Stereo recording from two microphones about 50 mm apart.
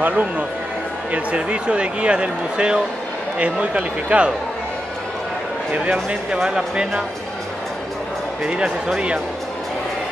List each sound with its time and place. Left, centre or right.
0.0 s a man's voice: right
1.1 s speech: centre
6.0 s speech: centre
8.5 s speech: centre